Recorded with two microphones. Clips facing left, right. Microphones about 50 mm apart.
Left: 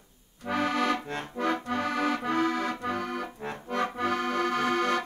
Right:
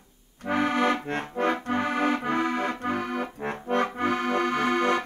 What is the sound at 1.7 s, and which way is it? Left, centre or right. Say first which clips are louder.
Accordion: right 3 dB; right.